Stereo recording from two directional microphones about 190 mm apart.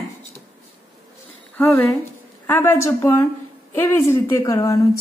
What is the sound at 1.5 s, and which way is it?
A woman's voice, 10° left (ahead or behind).